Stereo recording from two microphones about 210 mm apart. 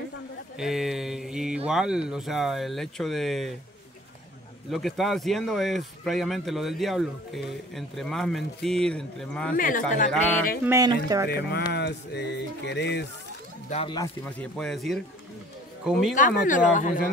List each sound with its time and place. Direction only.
0.6 s mantra: centre (ahead or behind)
1.7 s speech: 5° right (ahead or behind)
4.6 s speech: centre (ahead or behind)
9.6 s speech: 40° left (ahead or behind)
10.6 s speech: 15° right (ahead or behind)
11.2 s music: 50° left (ahead or behind)
13.7 s speech: 30° left (ahead or behind)
13.9 s speech: 15° left (ahead or behind)
14.6 s speech: centre (ahead or behind)
16.2 s speech: 40° left (ahead or behind)